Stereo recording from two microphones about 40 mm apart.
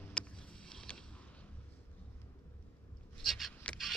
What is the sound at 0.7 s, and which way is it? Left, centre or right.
Mechanisms, centre.